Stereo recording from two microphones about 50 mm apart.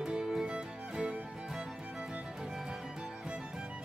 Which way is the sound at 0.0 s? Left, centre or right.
Centre.